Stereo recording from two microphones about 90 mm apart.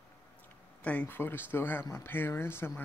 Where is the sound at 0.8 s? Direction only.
20° left (ahead or behind).